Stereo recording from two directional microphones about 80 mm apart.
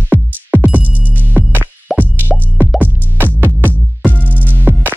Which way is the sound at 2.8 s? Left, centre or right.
Right.